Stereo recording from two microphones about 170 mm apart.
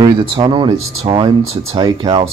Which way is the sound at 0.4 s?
25° right (ahead or behind).